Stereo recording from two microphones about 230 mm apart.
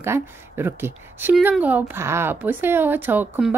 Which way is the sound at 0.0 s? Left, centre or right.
Centre.